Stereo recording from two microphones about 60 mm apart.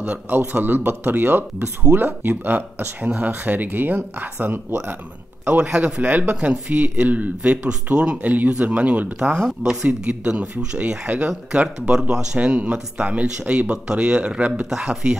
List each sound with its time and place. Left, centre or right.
0.6 s speech: right
6.0 s speech: right
9.3 s speech: centre
14.7 s speech: centre